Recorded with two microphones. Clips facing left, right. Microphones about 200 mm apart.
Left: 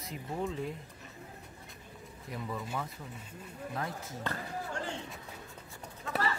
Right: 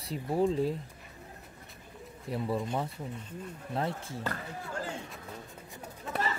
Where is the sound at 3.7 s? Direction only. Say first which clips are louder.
Right 6 dB; 30° right (ahead or behind).